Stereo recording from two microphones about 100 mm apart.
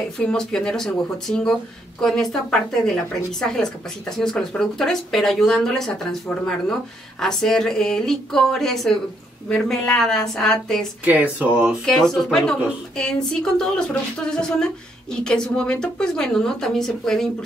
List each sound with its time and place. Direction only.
0.2 s speech: 10° left (ahead or behind)
3.3 s speech: 5° left (ahead or behind)
11.1 s speech: 15° right (ahead or behind)
11.8 s a woman's voice: 5° left (ahead or behind)